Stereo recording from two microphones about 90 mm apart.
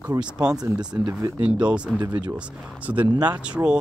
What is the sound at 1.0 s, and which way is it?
Speech, 30° right (ahead or behind).